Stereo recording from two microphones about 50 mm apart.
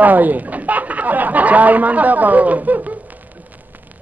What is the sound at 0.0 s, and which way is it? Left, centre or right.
Speech, right.